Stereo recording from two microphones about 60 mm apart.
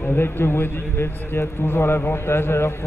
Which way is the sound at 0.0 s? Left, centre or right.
Left.